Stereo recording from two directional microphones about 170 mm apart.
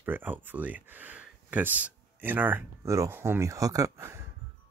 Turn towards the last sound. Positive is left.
turn(degrees=-15)  # may be behind; listen again after turning